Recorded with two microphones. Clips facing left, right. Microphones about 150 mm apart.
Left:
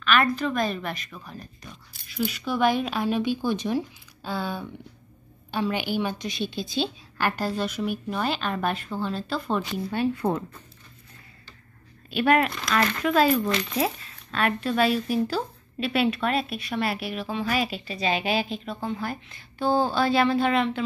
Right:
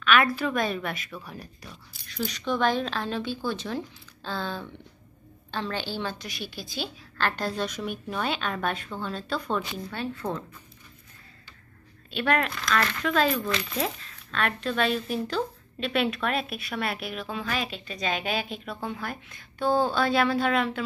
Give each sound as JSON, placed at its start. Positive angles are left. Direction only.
{"t": 0.0, "sound": "speech", "side_deg": 0}
{"t": 2.0, "sound": "a woman's voice", "side_deg": 5}
{"t": 7.2, "sound": "speech", "side_deg": 10}
{"t": 12.1, "sound": "speech", "side_deg": 10}